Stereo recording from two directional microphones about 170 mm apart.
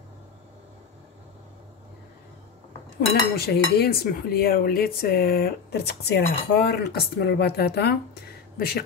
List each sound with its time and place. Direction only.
3.3 s dishes: 65° left (ahead or behind)
8.5 s speech: 65° left (ahead or behind)